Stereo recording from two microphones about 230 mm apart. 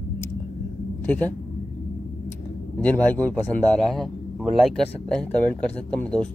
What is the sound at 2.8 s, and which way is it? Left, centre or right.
A man's voice, centre.